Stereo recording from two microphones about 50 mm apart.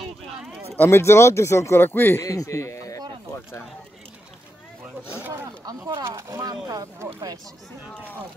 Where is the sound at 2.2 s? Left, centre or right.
Left.